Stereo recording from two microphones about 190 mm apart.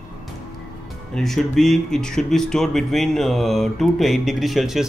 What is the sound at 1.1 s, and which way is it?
Speech, centre (ahead or behind).